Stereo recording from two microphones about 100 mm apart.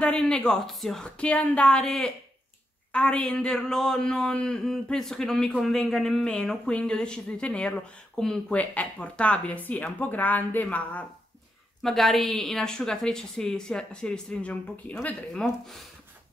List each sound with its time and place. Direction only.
0.0 s speech: 10° left (ahead or behind)
11.8 s a woman's voice: 5° left (ahead or behind)
15.3 s a woman's voice: 5° left (ahead or behind)